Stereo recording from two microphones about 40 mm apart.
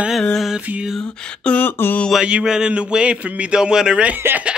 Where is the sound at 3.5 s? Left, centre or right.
Centre.